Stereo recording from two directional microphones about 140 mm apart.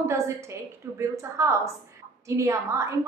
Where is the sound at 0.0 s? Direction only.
20° right (ahead or behind).